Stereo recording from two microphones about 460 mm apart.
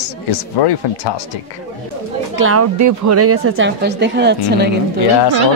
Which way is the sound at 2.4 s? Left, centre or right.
Right.